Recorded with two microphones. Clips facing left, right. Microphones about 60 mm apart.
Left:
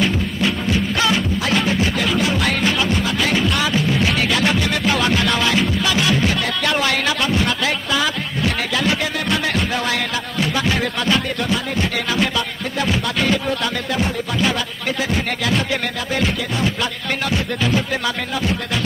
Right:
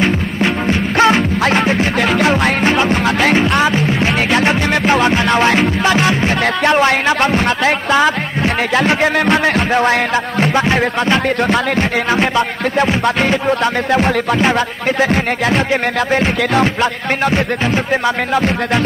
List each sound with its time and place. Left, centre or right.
0.0 s music: right
5.2 s music: right
6.4 s music: right
10.4 s music: right